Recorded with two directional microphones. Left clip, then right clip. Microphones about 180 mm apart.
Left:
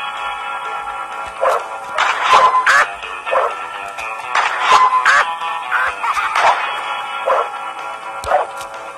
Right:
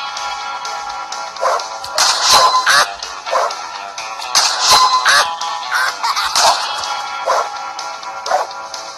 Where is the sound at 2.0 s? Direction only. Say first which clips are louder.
Even; 40° right (ahead or behind).